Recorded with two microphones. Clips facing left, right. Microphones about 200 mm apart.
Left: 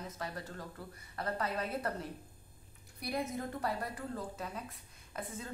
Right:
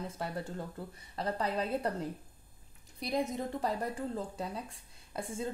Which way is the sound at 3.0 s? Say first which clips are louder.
Right 4 dB; 20° right (ahead or behind).